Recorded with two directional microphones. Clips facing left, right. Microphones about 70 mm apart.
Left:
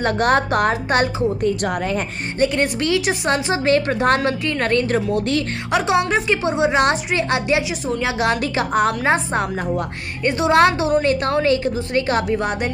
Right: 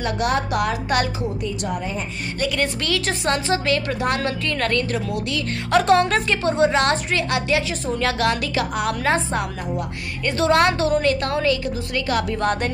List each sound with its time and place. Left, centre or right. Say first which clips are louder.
0.0 s a woman's voice: left 5 dB; left
1.4 s a woman's voice: left 6 dB; left
2.4 s a woman's voice: left 5 dB; left
3.6 s a woman's voice: left 5 dB; left
4.2 s a woman's voice: left 3 dB; left
4.9 s a woman's voice: left 6 dB; left
5.7 s a woman's voice: right 2 dB; centre; by 12.4 s left
12.4 s a woman's voice: even; centre